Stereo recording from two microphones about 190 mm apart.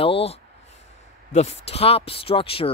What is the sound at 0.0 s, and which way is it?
Speech, 30° left (ahead or behind).